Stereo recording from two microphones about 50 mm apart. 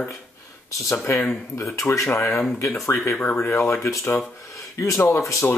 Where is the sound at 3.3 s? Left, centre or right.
Left.